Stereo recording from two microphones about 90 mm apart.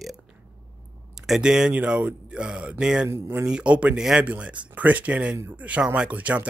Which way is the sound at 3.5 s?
10° right (ahead or behind).